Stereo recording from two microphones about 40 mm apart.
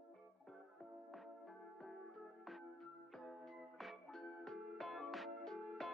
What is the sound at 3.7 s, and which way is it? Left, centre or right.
Music, centre.